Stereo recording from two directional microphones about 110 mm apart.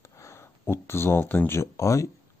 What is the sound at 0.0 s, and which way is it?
Speech, 25° left (ahead or behind).